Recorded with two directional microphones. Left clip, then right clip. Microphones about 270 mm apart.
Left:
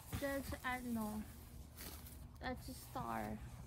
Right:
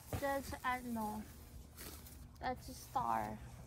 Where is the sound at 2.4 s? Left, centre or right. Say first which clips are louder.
Right 5 dB; centre.